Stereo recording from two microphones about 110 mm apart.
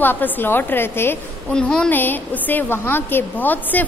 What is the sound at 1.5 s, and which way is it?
A woman's voice, 10° left (ahead or behind).